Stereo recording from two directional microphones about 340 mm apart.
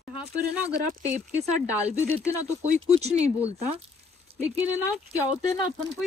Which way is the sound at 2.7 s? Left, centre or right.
Centre.